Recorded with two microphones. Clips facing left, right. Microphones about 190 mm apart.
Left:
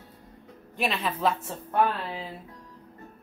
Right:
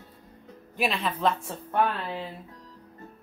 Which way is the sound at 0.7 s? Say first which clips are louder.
Right 1 dB; centre (ahead or behind).